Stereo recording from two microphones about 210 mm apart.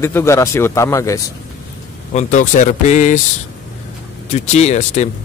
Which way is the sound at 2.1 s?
35° left (ahead or behind).